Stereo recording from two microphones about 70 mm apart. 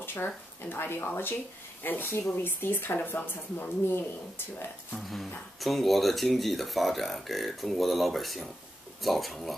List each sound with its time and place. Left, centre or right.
0.0 s a sound: left
0.7 s speech: left
4.9 s speech: centre